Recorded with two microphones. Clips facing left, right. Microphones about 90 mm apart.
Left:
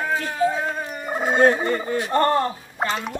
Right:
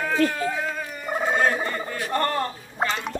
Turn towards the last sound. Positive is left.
turn(degrees=0)  # may be behind; listen again after turning